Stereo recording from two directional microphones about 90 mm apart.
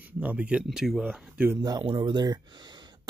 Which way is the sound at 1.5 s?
45° right (ahead or behind).